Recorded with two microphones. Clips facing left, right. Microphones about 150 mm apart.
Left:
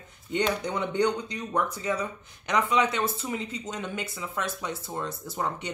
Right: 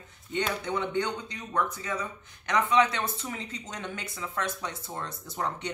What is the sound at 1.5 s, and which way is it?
Speech, 15° left (ahead or behind).